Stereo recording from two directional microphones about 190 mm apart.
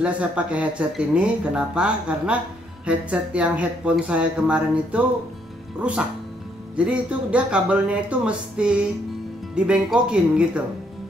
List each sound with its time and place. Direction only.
0.0 s speech: 5° right (ahead or behind)